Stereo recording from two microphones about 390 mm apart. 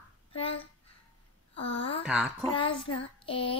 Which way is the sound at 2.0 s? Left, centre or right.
Centre.